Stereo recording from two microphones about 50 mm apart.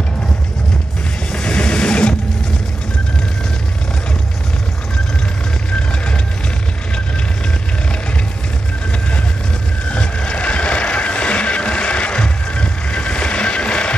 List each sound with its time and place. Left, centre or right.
1.3 s sewing machine: centre
5.7 s music: left
9.8 s vehicle: left